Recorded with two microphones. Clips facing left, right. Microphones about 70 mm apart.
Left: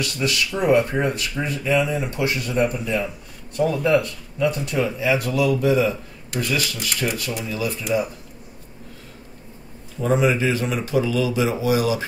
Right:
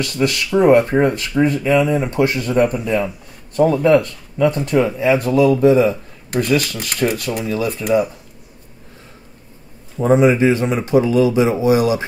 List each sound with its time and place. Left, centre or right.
0.0 s speech: right
10.0 s speech: right